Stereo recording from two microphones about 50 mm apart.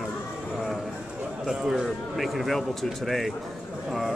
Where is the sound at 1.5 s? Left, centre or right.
Centre.